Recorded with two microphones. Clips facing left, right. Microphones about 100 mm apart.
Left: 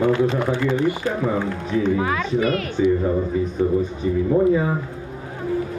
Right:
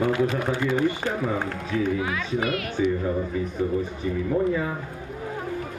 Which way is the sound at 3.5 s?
20° left (ahead or behind).